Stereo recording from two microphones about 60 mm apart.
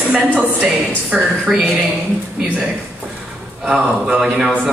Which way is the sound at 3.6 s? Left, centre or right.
Centre.